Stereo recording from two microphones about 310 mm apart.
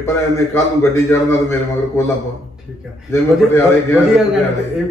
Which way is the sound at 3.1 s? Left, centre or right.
Centre.